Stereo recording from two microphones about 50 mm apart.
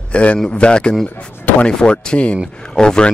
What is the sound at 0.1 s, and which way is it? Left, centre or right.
A man's voice, left.